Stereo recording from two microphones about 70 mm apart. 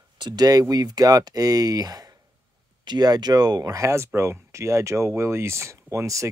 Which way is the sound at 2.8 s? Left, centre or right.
Right.